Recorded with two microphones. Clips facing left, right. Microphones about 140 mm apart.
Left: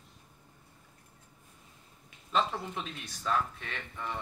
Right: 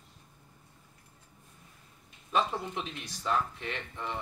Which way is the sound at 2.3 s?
15° right (ahead or behind).